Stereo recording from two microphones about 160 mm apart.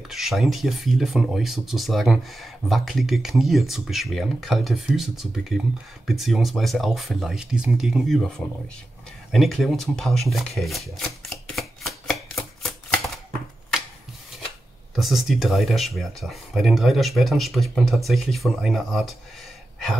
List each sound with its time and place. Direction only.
0.1 s speech: centre (ahead or behind)
9.3 s shuffling cards: centre (ahead or behind)
15.0 s speech: centre (ahead or behind)